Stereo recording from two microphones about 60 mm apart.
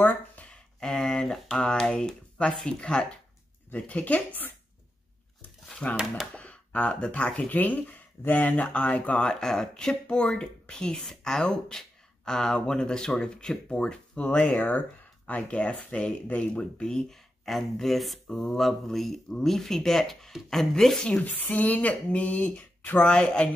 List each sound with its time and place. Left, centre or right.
0.0 s a sound: left
0.7 s speech: centre
3.7 s speech: left
5.8 s speech: left
21.1 s speech: left
23.0 s speech: centre